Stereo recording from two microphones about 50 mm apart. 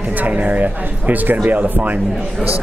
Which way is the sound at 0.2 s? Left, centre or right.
Right.